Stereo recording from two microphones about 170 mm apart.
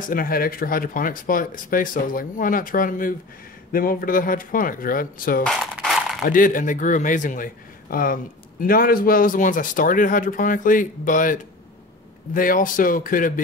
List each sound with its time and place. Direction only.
0.1 s a man's voice: 60° left (ahead or behind)
5.4 s a sound: centre (ahead or behind)
6.2 s a man's voice: 55° left (ahead or behind)
12.4 s speech: 55° left (ahead or behind)